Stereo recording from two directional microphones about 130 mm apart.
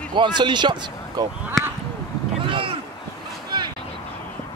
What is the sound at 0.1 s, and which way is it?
Speech, 35° right (ahead or behind).